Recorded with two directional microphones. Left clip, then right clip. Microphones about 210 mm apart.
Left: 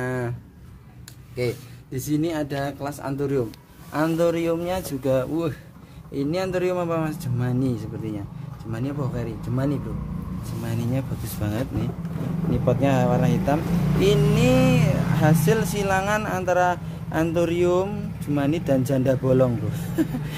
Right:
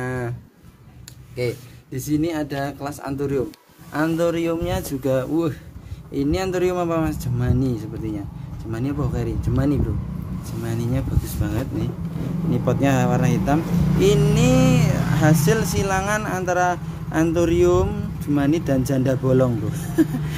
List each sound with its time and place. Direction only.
0.0 s a sound: 5° left (ahead or behind)
2.0 s speech: 10° left (ahead or behind)
8.7 s speech: 10° right (ahead or behind)
10.6 s speech: centre (ahead or behind)
11.2 s speech: 10° left (ahead or behind)
12.6 s speech: centre (ahead or behind)